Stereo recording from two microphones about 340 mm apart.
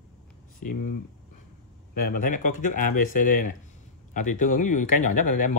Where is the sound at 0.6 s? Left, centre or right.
Left.